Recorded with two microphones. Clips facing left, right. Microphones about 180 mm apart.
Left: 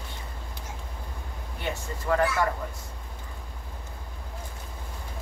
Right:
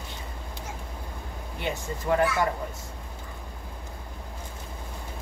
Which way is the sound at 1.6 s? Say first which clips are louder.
Right 2 dB; 20° right (ahead or behind).